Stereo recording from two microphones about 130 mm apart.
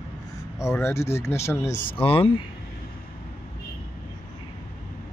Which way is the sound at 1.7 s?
90° left.